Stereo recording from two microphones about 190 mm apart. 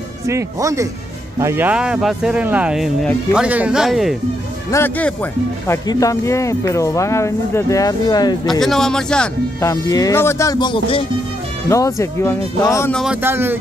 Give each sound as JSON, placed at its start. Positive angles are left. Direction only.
{"t": 0.3, "sound": "speech", "side_deg": -15}
{"t": 4.6, "sound": "speech", "side_deg": 10}
{"t": 8.5, "sound": "speech", "side_deg": 0}
{"t": 9.7, "sound": "speech", "side_deg": 20}
{"t": 11.7, "sound": "speech", "side_deg": 15}
{"t": 12.9, "sound": "speech", "side_deg": -5}